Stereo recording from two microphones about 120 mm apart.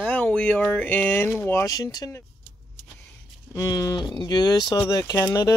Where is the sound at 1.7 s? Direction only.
35° left (ahead or behind).